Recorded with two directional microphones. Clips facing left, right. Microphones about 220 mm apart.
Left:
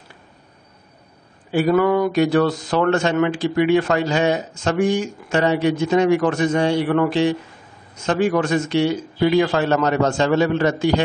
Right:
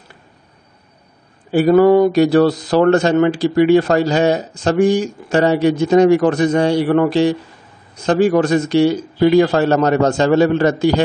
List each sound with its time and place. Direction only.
1.5 s speech: 40° right (ahead or behind)